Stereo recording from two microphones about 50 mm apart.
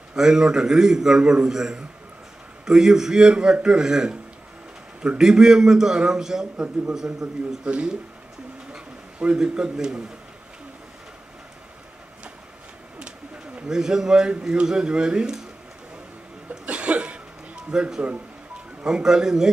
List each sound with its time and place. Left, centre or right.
0.1 s a man's voice: centre
7.6 s a man's voice: right
13.7 s a man's voice: centre
16.4 s cough: right
17.6 s a man's voice: centre